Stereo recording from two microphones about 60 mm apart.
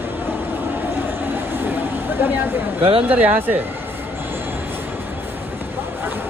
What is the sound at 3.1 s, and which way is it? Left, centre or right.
Speech, right.